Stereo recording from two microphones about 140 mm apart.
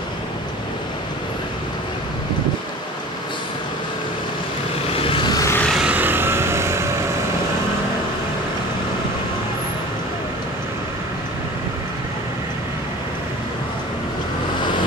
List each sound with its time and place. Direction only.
5.0 s vehicle: 35° left (ahead or behind)
5.7 s vehicle: 5° right (ahead or behind)